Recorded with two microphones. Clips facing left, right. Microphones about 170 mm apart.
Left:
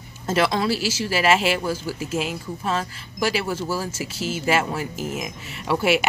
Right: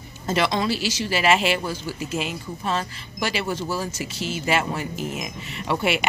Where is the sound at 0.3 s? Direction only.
5° left (ahead or behind).